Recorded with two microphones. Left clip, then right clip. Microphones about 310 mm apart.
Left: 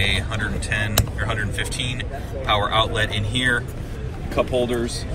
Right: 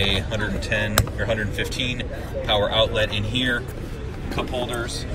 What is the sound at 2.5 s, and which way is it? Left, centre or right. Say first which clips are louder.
Speech: even; centre.